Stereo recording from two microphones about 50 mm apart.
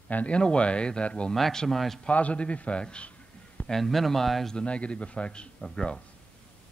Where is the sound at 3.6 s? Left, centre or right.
Centre.